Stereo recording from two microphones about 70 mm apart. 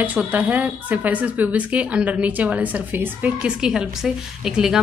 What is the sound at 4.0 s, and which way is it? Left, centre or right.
Speech, centre.